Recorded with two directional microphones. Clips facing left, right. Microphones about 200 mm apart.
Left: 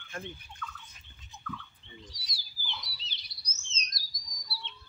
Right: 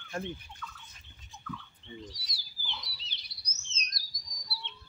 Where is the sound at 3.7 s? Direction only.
60° right (ahead or behind).